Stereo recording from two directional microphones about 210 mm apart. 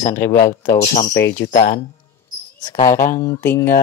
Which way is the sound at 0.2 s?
10° left (ahead or behind).